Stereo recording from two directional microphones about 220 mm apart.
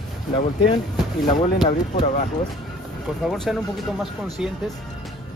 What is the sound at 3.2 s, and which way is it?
Speech, centre (ahead or behind).